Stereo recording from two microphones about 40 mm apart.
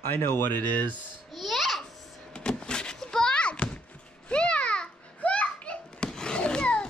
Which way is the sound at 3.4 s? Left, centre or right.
Left.